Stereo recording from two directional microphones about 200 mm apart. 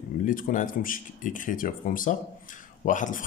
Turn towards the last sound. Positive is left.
turn(degrees=40)  # may be behind; listen again after turning